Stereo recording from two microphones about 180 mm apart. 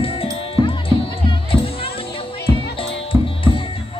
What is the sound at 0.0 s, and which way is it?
Music, 30° left (ahead or behind).